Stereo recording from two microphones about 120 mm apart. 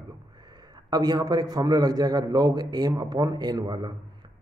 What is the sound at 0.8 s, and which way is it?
A man's voice, 35° right (ahead or behind).